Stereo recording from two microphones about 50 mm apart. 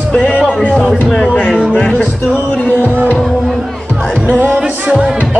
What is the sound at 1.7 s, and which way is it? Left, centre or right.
Music, left.